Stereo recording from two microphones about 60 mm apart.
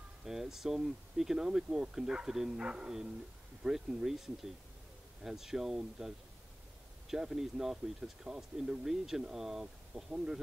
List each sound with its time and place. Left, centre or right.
0.2 s speech: centre